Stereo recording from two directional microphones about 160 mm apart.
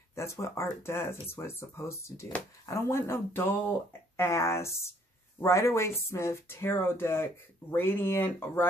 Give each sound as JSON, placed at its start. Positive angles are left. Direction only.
{"t": 0.1, "sound": "speech", "side_deg": 15}